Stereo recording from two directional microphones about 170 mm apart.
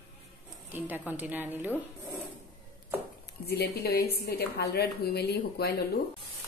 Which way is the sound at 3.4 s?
70° left (ahead or behind).